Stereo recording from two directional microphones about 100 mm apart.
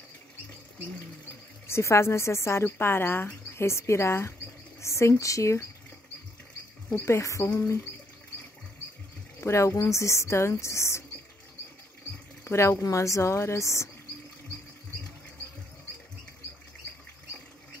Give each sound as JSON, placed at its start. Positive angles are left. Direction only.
{"t": 1.7, "sound": "speech", "side_deg": 30}
{"t": 7.1, "sound": "speech", "side_deg": 30}
{"t": 9.4, "sound": "speech", "side_deg": 30}
{"t": 12.4, "sound": "speech", "side_deg": 25}